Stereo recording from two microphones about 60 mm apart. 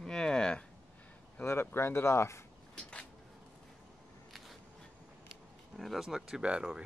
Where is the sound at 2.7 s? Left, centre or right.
Centre.